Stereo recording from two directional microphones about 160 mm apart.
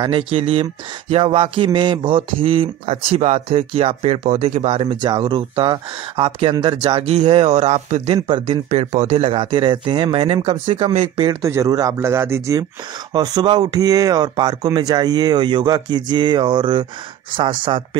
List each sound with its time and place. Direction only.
0.0 s speech: 35° right (ahead or behind)
11.4 s speech: 20° right (ahead or behind)